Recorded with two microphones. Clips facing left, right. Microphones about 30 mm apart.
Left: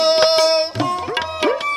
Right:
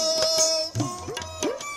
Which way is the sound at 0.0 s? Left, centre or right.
Left.